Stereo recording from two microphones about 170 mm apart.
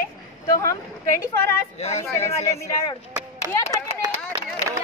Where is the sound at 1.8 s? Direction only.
40° left (ahead or behind).